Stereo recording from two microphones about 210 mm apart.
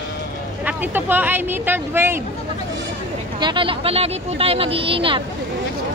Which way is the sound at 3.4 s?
25° right (ahead or behind).